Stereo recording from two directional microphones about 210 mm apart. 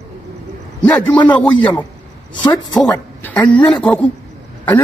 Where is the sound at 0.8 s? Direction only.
5° left (ahead or behind).